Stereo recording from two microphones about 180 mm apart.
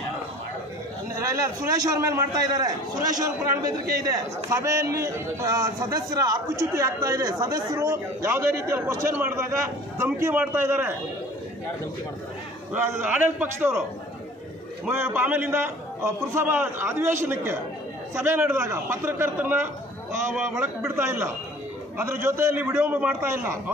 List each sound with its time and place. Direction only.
1.2 s a man's voice: 15° right (ahead or behind)
12.7 s a man's voice: 10° right (ahead or behind)
14.9 s a man's voice: 15° right (ahead or behind)
20.9 s a man's voice: 15° right (ahead or behind)